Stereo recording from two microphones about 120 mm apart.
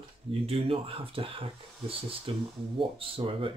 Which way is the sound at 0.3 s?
50° right (ahead or behind).